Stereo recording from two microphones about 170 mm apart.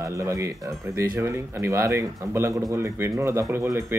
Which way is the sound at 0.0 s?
15° right (ahead or behind).